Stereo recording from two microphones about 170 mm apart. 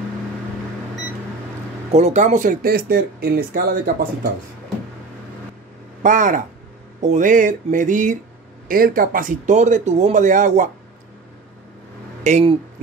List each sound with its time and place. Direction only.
1.9 s speech: 40° right (ahead or behind); by 4.3 s 60° right (ahead or behind)
6.0 s speech: 50° right (ahead or behind)
12.2 s speech: 45° right (ahead or behind)